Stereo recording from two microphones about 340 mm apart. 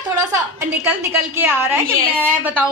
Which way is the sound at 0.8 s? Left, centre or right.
Centre.